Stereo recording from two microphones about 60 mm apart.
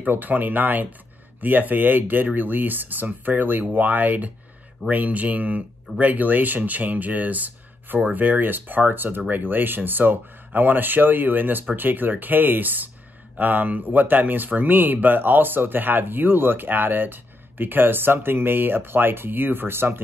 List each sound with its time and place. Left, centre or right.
0.0 s speech: right